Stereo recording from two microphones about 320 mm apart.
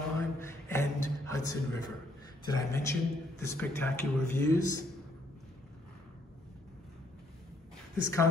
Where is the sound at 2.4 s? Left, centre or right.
Centre.